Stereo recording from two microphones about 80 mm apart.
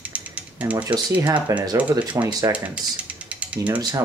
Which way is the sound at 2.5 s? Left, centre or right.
Centre.